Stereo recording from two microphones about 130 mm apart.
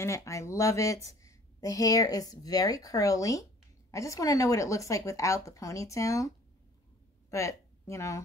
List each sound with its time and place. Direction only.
0.0 s a woman's voice: 25° left (ahead or behind)